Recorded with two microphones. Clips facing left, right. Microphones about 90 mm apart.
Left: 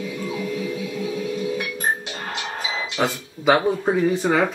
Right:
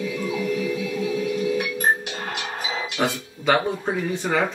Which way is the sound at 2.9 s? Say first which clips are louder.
Left 2 dB; 5° left (ahead or behind).